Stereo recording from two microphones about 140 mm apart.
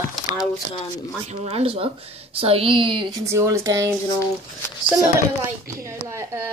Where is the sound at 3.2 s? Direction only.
20° right (ahead or behind).